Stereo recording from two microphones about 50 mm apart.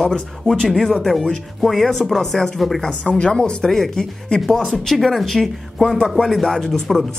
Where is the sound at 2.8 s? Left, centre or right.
Centre.